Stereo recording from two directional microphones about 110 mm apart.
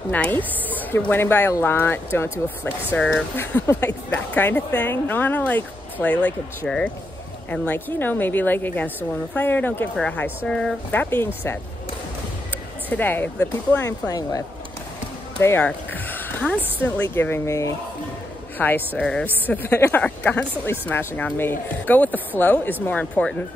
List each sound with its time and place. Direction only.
0.1 s speech: 15° left (ahead or behind)
10.9 s speech: 20° left (ahead or behind)
12.9 s speech: 15° left (ahead or behind)
14.0 s speech: 35° left (ahead or behind)
15.4 s speech: 20° left (ahead or behind)
18.9 s speech: 5° left (ahead or behind)
19.2 s speech: 15° left (ahead or behind)